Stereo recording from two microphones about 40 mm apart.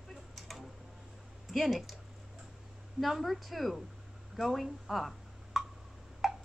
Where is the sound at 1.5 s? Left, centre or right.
Centre.